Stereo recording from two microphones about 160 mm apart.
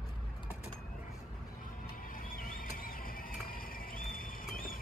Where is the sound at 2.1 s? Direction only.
60° left (ahead or behind).